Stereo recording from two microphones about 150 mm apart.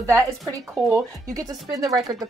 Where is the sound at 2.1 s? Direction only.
30° right (ahead or behind).